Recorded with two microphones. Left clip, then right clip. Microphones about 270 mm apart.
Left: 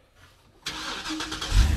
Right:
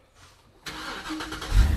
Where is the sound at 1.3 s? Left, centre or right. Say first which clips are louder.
Left 2 dB; left.